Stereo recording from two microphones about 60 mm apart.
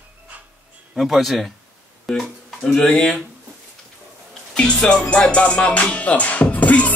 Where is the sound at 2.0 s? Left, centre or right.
Centre.